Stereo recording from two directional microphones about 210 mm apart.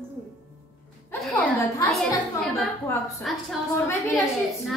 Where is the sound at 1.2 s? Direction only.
5° left (ahead or behind).